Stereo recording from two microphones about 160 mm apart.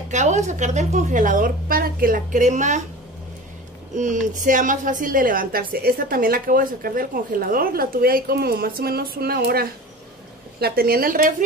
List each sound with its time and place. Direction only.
0.1 s a woman's voice: 45° right (ahead or behind)
3.9 s a woman's voice: 55° right (ahead or behind)